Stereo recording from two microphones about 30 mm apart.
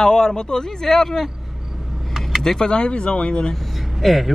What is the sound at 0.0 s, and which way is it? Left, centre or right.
A man's voice, left.